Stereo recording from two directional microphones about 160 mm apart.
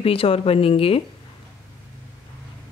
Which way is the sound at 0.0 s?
35° left (ahead or behind).